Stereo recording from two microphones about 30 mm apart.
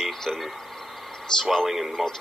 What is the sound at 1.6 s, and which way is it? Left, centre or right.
Speech, centre.